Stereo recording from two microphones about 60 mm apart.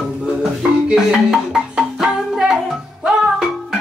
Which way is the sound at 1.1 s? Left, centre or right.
Centre.